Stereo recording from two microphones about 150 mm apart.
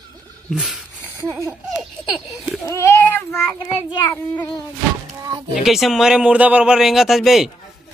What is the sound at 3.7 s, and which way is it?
Speech, 25° left (ahead or behind).